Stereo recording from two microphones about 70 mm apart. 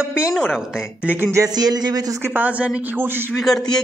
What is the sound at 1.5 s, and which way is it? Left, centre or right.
Speech, right.